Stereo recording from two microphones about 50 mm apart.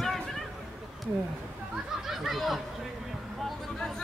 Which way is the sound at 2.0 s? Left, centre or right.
Centre.